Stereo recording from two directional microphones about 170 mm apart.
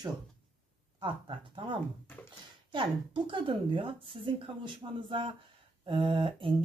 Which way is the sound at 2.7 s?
30° right (ahead or behind).